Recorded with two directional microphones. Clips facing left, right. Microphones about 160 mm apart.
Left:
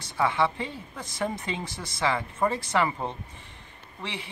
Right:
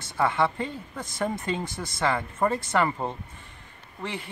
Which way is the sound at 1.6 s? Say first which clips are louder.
Right 3 dB; 50° right (ahead or behind).